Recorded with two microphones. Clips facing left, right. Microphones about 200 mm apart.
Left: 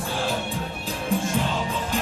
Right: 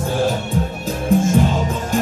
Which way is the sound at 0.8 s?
45° right (ahead or behind).